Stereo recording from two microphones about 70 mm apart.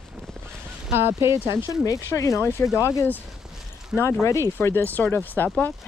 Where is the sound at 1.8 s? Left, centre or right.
Left.